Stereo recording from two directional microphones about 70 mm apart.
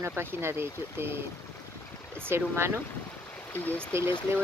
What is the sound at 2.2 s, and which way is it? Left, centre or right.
Speech, right.